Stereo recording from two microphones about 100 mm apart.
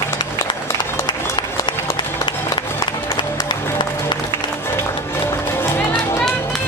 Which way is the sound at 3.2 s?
50° left (ahead or behind).